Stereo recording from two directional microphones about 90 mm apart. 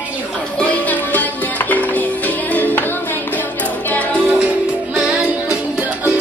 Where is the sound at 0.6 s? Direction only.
15° left (ahead or behind).